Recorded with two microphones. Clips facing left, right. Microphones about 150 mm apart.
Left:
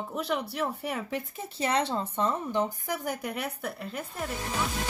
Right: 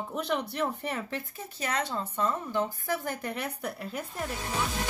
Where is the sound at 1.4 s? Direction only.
30° left (ahead or behind).